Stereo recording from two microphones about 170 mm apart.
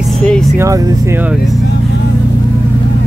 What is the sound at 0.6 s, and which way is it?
Speech, 20° right (ahead or behind).